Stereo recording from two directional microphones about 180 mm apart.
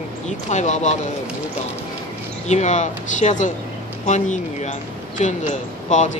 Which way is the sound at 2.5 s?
40° left (ahead or behind).